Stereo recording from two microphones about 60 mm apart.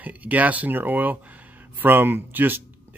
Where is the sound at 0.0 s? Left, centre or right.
Right.